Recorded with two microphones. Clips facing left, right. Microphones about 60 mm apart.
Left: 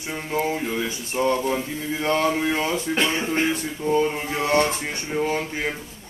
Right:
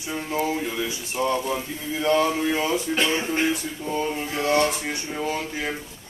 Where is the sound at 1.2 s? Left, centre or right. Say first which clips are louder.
Left 3 dB; left.